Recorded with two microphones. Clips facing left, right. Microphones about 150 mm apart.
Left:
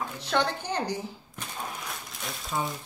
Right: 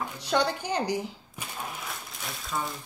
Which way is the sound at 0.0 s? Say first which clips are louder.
Right 1 dB; 15° right (ahead or behind).